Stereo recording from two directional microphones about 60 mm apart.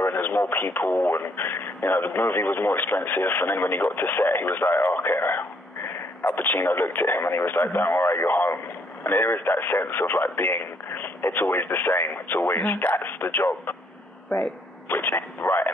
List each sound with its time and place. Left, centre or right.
0.0 s radio: left
0.5 s speech: left
8.2 s speech: left
14.9 s speech: left